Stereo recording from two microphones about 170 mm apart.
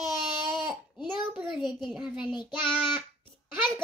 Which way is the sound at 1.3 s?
Centre (ahead or behind).